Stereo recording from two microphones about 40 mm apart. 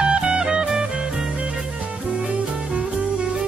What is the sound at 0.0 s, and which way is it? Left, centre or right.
Music, right.